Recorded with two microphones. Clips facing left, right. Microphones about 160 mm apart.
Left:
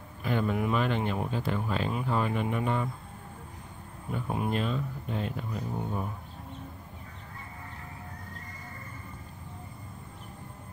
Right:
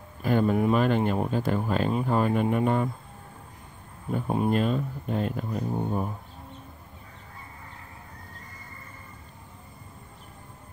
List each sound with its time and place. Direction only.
0.2 s speech: 40° right (ahead or behind)
4.1 s speech: 35° right (ahead or behind)